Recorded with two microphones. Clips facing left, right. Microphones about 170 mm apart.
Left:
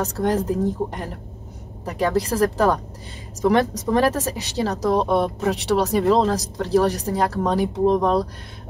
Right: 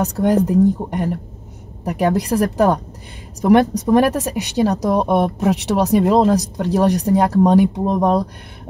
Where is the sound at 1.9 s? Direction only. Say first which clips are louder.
Right 4 dB; 15° right (ahead or behind).